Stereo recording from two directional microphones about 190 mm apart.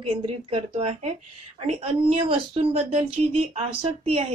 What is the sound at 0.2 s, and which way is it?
Speech, 25° right (ahead or behind).